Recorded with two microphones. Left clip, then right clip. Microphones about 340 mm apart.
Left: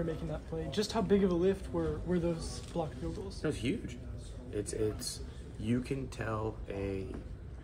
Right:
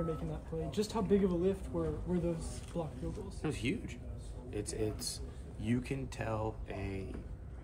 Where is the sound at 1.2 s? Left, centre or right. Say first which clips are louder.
Left 3 dB; left.